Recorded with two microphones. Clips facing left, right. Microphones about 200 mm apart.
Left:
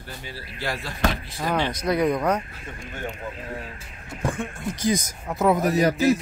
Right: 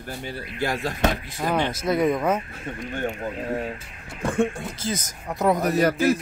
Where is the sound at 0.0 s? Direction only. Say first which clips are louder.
Right 5 dB; 55° right (ahead or behind).